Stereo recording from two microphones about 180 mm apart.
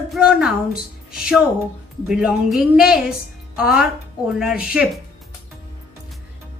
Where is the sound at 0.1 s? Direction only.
5° right (ahead or behind).